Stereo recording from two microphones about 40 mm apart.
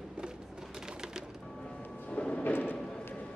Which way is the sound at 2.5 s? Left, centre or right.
Left.